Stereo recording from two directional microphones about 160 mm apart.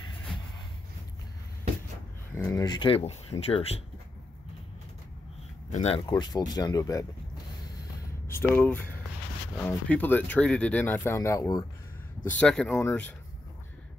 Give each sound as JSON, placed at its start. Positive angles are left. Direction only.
{"t": 2.3, "sound": "speech", "side_deg": 20}
{"t": 3.1, "sound": "speech", "side_deg": 40}
{"t": 5.7, "sound": "speech", "side_deg": 45}
{"t": 5.9, "sound": "speech", "side_deg": 30}
{"t": 8.3, "sound": "speech", "side_deg": 15}
{"t": 12.4, "sound": "speech", "side_deg": 5}